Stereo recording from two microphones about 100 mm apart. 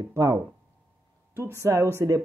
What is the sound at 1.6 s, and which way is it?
Speech, 25° right (ahead or behind).